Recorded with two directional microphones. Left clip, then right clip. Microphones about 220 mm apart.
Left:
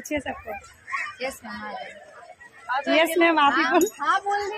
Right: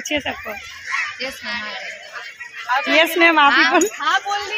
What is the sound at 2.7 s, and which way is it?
Speech, 20° right (ahead or behind).